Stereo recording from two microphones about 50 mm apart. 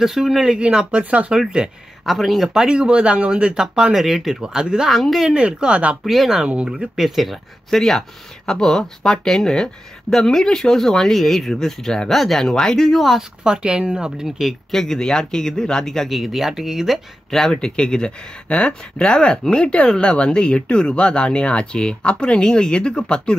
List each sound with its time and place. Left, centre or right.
0.0 s speech: centre
2.0 s speech: centre
2.5 s speech: centre
3.9 s speech: centre
4.8 s speech: centre
5.3 s speech: centre
6.0 s speech: centre
6.4 s speech: centre
7.7 s speech: centre
13.4 s speech: centre
14.7 s speech: centre
16.1 s speech: centre
17.3 s speech: centre